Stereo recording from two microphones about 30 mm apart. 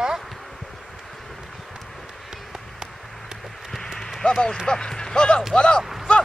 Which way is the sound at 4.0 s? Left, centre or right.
Centre.